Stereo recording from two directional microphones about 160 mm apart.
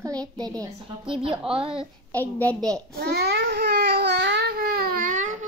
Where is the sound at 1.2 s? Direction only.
5° right (ahead or behind).